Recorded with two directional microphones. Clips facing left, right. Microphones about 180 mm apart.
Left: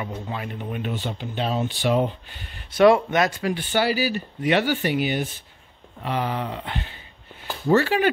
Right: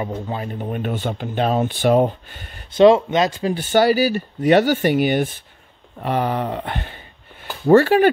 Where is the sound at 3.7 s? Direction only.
45° right (ahead or behind).